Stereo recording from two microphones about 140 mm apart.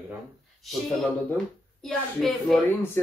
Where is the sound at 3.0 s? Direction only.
15° left (ahead or behind).